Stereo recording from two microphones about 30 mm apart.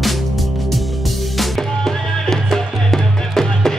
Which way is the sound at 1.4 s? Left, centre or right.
Centre.